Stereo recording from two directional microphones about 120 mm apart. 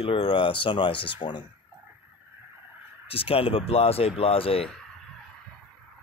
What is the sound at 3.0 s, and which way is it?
Speech, 50° left (ahead or behind).